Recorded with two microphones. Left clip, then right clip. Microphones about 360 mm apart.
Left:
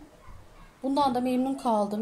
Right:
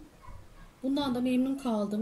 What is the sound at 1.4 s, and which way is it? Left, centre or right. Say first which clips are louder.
Speech: left 6 dB; left.